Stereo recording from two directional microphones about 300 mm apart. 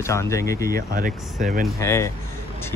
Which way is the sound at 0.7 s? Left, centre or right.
Right.